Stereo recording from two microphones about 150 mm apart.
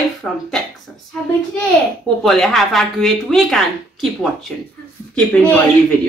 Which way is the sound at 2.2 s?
5° left (ahead or behind).